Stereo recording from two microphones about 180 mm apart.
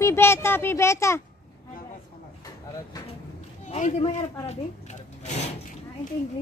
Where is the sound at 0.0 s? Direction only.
15° left (ahead or behind).